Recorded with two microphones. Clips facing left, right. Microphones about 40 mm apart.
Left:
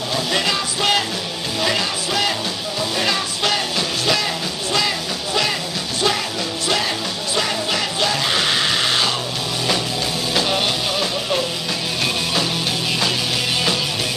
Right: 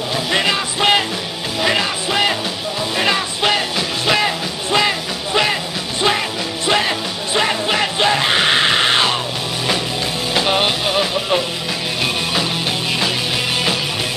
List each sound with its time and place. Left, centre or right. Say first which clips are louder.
0.1 s music: right 3 dB; right
10.3 s music: right 4 dB; right